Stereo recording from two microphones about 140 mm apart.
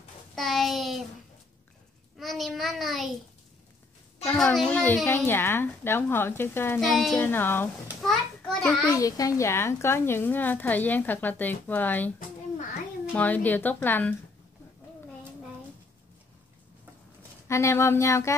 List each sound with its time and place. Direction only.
0.4 s a child's voice: centre (ahead or behind)
2.1 s a child's voice: centre (ahead or behind)
4.4 s a woman's voice: 5° left (ahead or behind)
6.8 s a child's voice: centre (ahead or behind)
7.2 s a woman's voice: 15° left (ahead or behind)
8.0 s a sound: centre (ahead or behind)
8.9 s a woman's voice: 25° left (ahead or behind)
13.1 s a woman's voice: 10° left (ahead or behind)
17.5 s speech: 20° left (ahead or behind)